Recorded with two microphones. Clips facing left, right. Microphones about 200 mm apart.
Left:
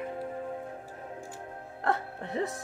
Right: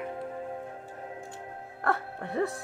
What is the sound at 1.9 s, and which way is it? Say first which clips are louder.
Music: even; 20° left (ahead or behind).